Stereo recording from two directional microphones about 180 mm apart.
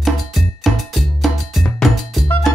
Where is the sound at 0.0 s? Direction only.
Centre (ahead or behind).